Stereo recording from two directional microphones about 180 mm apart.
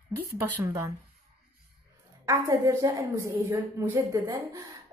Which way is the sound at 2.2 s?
20° right (ahead or behind).